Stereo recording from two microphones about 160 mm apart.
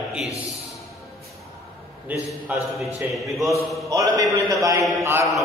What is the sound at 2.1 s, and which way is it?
A man's voice, 10° right (ahead or behind).